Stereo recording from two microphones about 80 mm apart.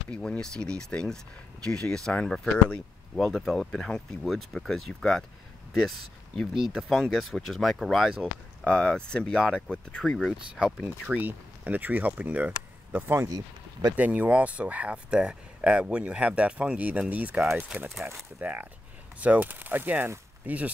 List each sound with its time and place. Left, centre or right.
0.1 s speech: centre
8.6 s speech: centre
10.5 s speech: centre
11.1 s speech: right
13.3 s speech: right
13.9 s speech: right
18.4 s speech: right